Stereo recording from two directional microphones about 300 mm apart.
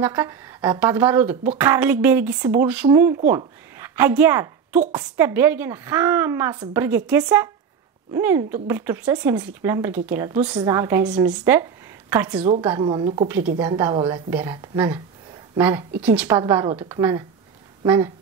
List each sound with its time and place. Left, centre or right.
0.0 s a woman's voice: centre